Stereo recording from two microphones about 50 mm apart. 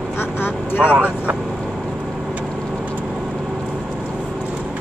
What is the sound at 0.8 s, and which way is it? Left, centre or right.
Speech, right.